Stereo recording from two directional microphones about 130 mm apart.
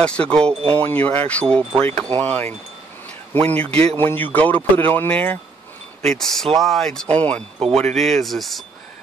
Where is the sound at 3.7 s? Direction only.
50° right (ahead or behind).